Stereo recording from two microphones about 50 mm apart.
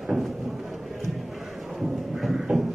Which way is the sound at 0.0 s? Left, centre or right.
Centre.